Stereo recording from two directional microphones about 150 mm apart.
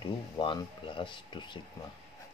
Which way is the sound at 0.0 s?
30° left (ahead or behind).